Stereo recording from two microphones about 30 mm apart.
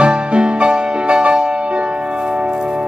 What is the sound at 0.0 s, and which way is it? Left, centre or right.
Music, right.